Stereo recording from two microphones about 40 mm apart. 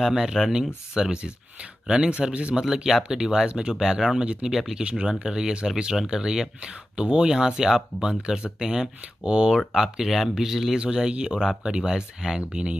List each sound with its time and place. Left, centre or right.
0.1 s speech: centre
1.1 s speech: right
2.6 s speech: centre
3.4 s speech: right
3.8 s speech: centre
4.5 s speech: centre
4.8 s speech: right
9.8 s speech: centre
10.8 s speech: right